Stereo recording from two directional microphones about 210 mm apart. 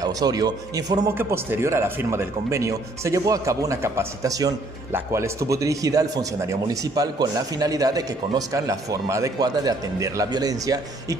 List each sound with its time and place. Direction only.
0.0 s speech: 20° right (ahead or behind)